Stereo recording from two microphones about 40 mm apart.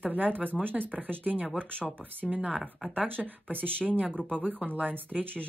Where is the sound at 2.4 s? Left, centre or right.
Centre.